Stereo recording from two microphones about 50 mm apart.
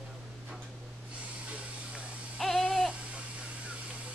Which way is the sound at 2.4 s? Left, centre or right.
Centre.